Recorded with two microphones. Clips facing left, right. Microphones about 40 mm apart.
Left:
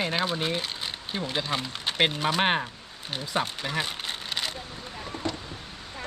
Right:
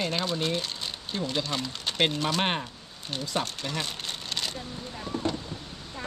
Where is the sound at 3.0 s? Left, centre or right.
Centre.